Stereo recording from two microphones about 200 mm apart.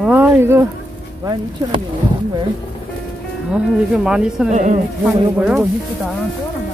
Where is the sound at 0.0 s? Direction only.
10° right (ahead or behind).